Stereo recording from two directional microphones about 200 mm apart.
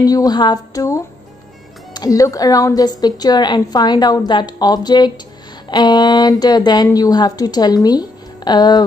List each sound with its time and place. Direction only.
0.0 s a woman's voice: 20° left (ahead or behind)